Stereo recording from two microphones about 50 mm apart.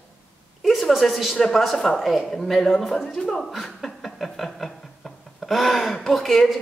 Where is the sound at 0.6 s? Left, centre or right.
Centre.